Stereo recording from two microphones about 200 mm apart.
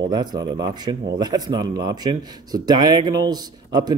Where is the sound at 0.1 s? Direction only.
20° right (ahead or behind).